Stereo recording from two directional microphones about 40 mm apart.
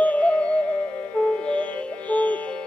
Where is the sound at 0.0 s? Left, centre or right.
Left.